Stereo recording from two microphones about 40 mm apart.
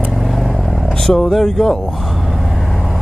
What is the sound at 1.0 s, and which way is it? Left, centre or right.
Speech, centre.